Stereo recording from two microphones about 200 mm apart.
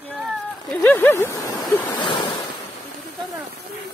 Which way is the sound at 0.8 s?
10° left (ahead or behind).